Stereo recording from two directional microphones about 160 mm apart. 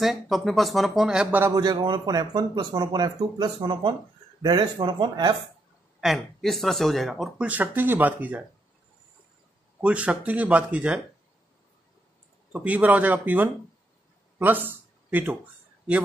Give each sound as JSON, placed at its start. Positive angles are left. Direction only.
{"t": 0.0, "sound": "speech", "side_deg": 0}
{"t": 1.5, "sound": "speech", "side_deg": -25}
{"t": 5.9, "sound": "speech", "side_deg": 0}
{"t": 9.8, "sound": "speech", "side_deg": -10}
{"t": 12.5, "sound": "speech", "side_deg": -10}
{"t": 14.4, "sound": "a sound", "side_deg": -10}